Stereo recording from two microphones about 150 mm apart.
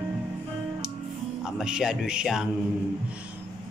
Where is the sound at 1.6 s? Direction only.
5° right (ahead or behind).